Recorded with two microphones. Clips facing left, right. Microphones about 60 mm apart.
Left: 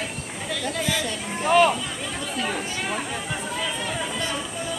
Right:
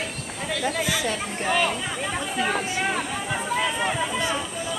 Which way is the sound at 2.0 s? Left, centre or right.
Right.